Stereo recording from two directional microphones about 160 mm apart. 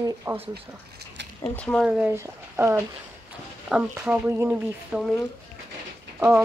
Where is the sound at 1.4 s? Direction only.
5° left (ahead or behind).